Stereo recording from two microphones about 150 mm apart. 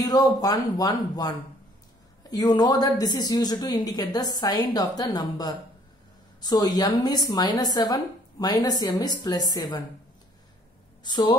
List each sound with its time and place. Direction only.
0.0 s a woman's voice: 25° left (ahead or behind)
11.1 s a woman's voice: 30° left (ahead or behind)